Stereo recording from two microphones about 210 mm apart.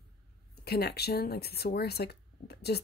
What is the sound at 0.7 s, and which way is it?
Speech, 50° left (ahead or behind).